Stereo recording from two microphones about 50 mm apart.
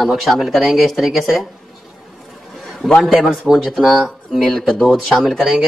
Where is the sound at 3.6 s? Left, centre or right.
Centre.